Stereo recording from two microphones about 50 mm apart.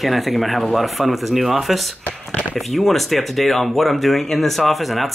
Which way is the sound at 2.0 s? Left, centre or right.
Left.